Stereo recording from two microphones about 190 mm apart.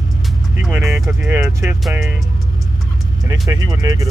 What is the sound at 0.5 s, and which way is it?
Speech, 5° right (ahead or behind).